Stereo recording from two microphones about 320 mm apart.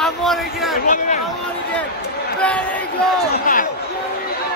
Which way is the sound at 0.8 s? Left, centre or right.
Left.